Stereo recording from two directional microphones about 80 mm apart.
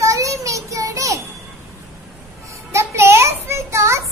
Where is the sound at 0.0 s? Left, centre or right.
Right.